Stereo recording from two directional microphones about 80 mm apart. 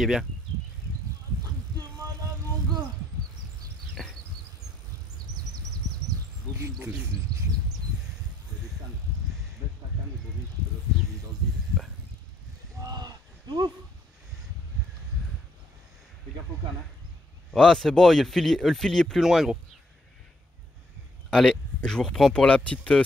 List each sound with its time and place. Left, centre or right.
0.0 s speech: centre
3.9 s a sound: centre
12.8 s a sound: right
17.5 s speech: centre
19.2 s speech: centre
21.3 s speech: centre